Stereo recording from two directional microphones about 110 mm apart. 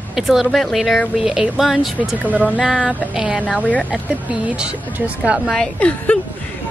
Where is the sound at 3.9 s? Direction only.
10° right (ahead or behind).